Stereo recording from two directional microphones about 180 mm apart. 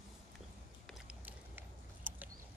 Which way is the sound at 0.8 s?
5° right (ahead or behind).